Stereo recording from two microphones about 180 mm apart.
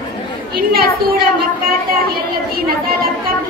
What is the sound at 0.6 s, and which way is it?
Speech, 55° right (ahead or behind).